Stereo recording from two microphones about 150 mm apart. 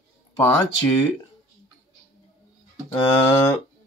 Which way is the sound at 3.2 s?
20° left (ahead or behind).